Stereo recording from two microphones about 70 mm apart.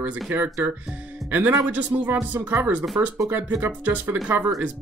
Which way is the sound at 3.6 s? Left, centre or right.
Right.